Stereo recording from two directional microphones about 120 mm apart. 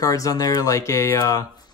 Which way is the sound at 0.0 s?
30° left (ahead or behind).